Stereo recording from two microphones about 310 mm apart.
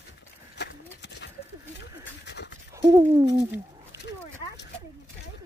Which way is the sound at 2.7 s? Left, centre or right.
Centre.